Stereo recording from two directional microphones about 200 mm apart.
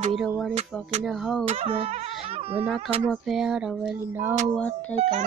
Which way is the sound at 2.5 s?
5° right (ahead or behind).